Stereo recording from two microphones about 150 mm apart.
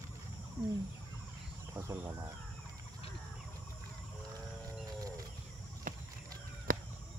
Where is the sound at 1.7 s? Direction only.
15° right (ahead or behind).